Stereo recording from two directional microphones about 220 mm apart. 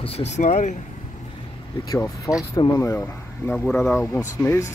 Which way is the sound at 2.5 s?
10° left (ahead or behind).